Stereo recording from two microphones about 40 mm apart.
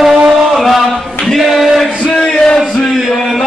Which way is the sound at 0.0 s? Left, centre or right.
Centre.